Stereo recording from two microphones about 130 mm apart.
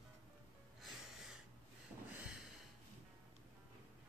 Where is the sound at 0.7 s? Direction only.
5° right (ahead or behind).